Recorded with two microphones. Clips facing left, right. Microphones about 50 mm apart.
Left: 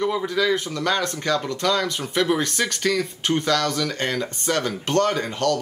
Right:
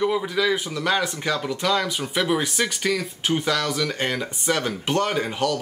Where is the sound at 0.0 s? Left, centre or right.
Centre.